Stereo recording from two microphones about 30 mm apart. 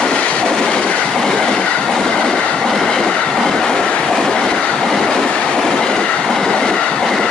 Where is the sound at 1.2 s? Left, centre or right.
Centre.